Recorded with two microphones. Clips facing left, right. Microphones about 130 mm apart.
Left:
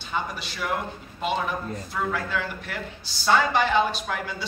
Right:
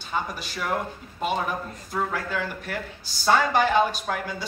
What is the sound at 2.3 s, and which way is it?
Speech, 40° right (ahead or behind).